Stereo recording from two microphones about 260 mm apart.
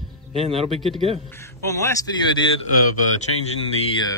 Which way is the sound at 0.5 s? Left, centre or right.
Right.